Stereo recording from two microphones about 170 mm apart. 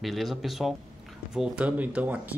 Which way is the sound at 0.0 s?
Centre (ahead or behind).